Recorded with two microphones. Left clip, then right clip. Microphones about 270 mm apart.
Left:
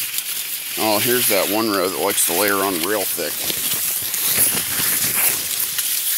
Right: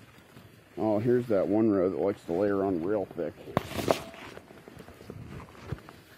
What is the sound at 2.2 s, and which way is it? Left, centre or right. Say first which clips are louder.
Speech: left 9 dB; centre.